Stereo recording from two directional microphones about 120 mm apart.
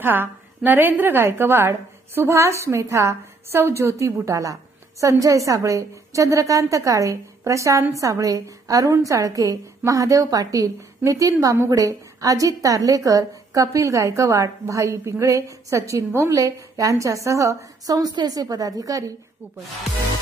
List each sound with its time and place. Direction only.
0.0 s a woman's voice: 15° right (ahead or behind)